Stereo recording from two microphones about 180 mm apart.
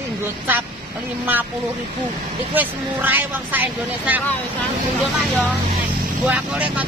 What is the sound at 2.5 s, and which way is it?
A woman's voice, 10° right (ahead or behind).